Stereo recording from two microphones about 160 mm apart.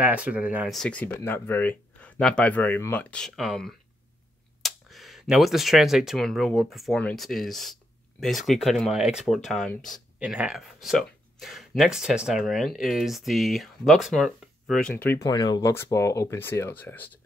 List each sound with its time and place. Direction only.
0.0 s speech: 10° right (ahead or behind)
0.7 s speech: 5° left (ahead or behind)
15.2 s speech: 25° left (ahead or behind)